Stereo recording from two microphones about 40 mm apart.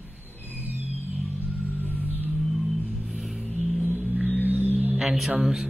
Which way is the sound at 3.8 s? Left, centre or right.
Right.